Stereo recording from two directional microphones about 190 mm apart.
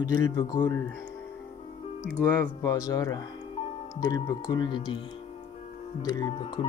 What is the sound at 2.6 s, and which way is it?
Speech, 20° left (ahead or behind).